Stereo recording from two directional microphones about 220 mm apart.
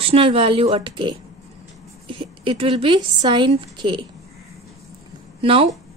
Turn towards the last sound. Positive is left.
turn(degrees=-25)  # may be behind; listen again after turning